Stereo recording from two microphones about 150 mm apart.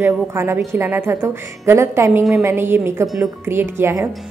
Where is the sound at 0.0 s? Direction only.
15° right (ahead or behind).